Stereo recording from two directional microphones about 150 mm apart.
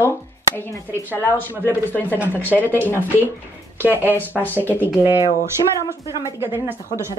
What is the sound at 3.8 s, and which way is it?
Speech, 15° right (ahead or behind).